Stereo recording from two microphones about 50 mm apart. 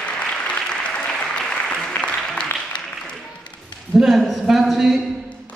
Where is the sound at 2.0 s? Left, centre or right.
Left.